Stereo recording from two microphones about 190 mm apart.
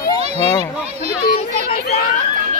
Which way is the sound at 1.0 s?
55° left (ahead or behind).